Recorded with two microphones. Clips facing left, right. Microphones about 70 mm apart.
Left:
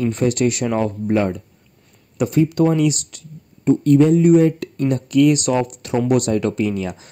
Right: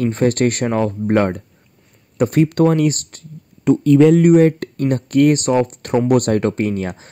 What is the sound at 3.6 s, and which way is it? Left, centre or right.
Speech, right.